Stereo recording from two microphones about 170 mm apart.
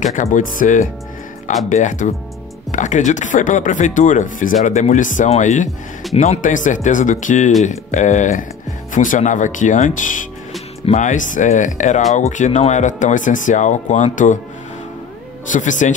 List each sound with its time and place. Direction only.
0.0 s speech: 45° left (ahead or behind)
15.5 s speech: 45° left (ahead or behind)